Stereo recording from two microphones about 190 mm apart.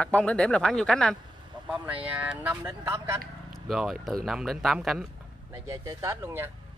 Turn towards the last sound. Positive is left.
turn(degrees=-15)  # may be behind; listen again after turning